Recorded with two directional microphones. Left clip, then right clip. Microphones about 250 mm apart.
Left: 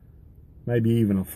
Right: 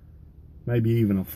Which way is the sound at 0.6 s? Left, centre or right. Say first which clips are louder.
Left 2 dB; centre.